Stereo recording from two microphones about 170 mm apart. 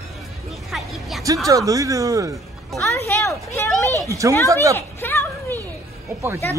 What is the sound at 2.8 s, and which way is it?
Speech, 15° left (ahead or behind).